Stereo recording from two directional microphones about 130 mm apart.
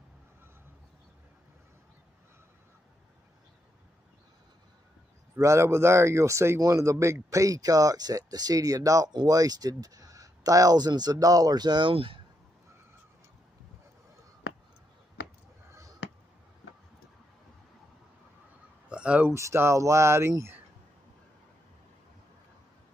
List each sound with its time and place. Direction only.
5.3 s speech: 20° right (ahead or behind); by 12.2 s 45° right (ahead or behind)
18.9 s a sound: 10° right (ahead or behind)
19.3 s speech: 20° right (ahead or behind)